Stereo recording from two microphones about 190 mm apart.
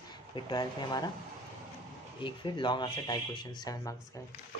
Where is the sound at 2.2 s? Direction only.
25° left (ahead or behind).